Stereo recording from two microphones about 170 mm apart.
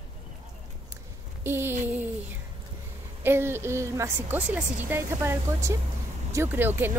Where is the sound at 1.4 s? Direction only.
15° right (ahead or behind).